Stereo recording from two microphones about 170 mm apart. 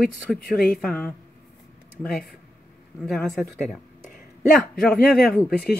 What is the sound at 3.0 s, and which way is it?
Speech, centre (ahead or behind).